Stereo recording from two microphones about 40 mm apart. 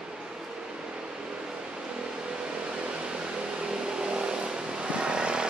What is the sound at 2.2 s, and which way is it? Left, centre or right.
Vehicle, right.